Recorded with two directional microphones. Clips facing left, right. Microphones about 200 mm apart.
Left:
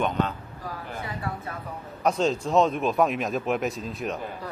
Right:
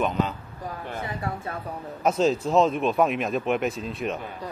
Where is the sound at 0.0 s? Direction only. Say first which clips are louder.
Right 1 dB; centre (ahead or behind).